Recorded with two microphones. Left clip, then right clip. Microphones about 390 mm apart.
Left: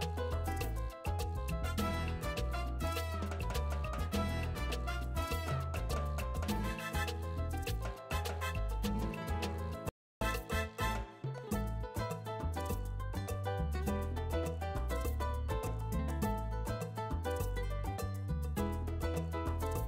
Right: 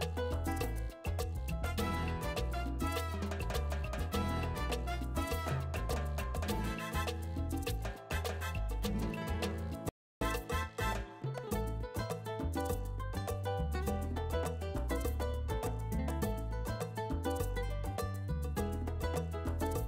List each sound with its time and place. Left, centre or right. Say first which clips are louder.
0.0 s music: right 1 dB; right
1.8 s music: right 2 dB; right
2.9 s salsa music: right 1 dB; right
6.4 s music: even; right
8.2 s music: left 1 dB; right
13.5 s music: even; right